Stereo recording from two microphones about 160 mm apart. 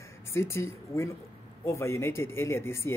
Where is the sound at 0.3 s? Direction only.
15° left (ahead or behind).